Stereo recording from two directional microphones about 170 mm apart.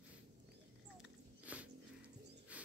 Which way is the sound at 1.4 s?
10° right (ahead or behind).